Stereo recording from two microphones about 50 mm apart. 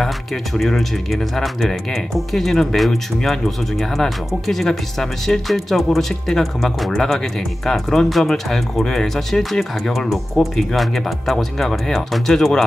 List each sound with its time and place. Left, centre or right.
0.6 s speech: centre